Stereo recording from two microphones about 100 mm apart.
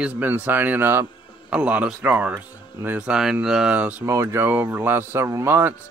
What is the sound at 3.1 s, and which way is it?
Speech, 5° right (ahead or behind).